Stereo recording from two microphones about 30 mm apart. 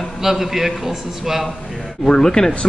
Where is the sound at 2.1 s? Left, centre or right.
Left.